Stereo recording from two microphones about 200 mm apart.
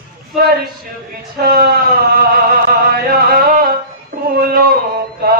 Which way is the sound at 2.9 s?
50° right (ahead or behind).